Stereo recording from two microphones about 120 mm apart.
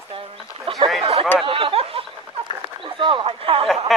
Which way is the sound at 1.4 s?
50° right (ahead or behind).